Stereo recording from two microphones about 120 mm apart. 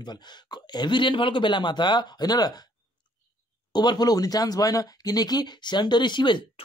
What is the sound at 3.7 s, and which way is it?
Speech, 35° left (ahead or behind).